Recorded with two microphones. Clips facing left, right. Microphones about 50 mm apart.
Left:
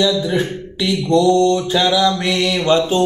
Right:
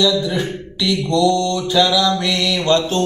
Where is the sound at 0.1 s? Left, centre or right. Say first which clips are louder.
Left 1 dB; left.